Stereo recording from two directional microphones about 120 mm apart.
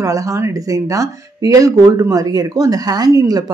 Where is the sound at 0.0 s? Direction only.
25° right (ahead or behind).